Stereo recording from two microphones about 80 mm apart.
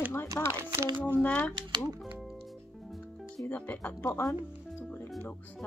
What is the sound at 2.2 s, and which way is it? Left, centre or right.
Music, centre.